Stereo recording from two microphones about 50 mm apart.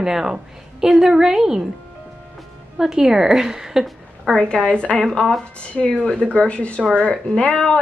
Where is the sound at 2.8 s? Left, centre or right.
Centre.